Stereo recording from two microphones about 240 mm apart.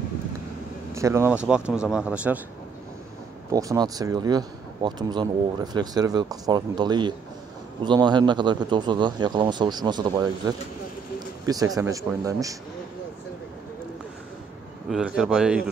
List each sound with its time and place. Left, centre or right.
0.9 s speech: centre
3.5 s a man's voice: centre
14.9 s speech: centre